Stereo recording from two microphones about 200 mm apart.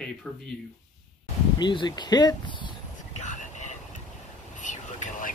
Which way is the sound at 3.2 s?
35° left (ahead or behind).